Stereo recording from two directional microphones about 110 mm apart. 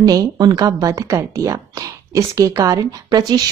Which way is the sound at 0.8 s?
30° right (ahead or behind).